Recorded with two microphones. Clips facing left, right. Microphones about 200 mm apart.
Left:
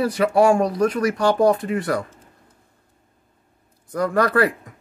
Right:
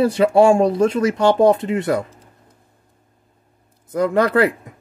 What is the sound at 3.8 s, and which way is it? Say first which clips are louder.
Speech: right 3 dB; 20° right (ahead or behind).